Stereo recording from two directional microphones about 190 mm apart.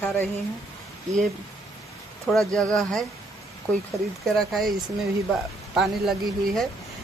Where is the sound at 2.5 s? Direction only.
Centre (ahead or behind).